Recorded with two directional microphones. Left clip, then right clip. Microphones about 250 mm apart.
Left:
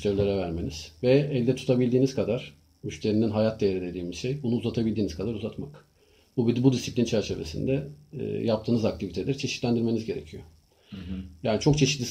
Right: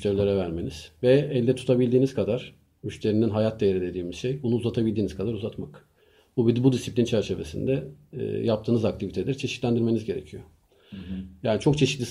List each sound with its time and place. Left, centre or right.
0.0 s speech: right
11.4 s speech: right